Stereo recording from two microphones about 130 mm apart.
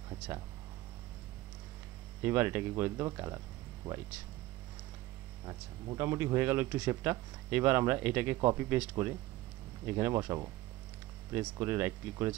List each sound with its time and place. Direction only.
2.2 s speech: 20° right (ahead or behind)
3.8 s speech: 10° right (ahead or behind)
5.5 s speech: 25° right (ahead or behind)